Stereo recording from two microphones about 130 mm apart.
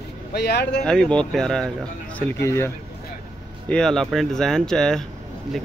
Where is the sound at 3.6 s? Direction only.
5° left (ahead or behind).